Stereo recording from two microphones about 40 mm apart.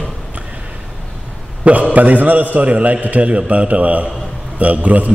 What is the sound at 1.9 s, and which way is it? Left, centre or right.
A man's voice, right.